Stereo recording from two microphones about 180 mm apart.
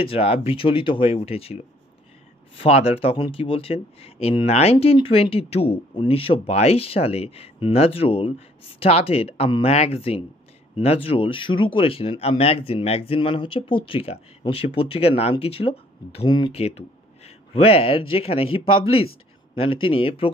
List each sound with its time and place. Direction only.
0.0 s speech: 30° left (ahead or behind)
2.6 s speech: 35° left (ahead or behind)